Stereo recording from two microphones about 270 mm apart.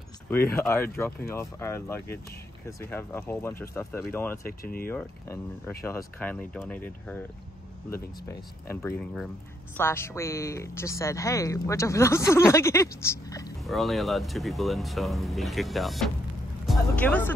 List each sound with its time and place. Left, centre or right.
0.6 s speech: centre
4.5 s speech: left
4.8 s speech: centre
8.6 s speech: centre
13.7 s speech: centre